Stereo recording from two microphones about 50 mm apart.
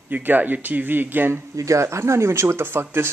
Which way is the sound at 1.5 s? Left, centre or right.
Right.